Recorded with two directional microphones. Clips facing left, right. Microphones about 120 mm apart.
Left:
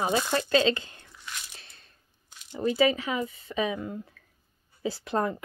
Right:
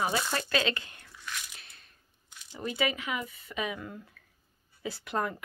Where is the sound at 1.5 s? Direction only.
35° left (ahead or behind).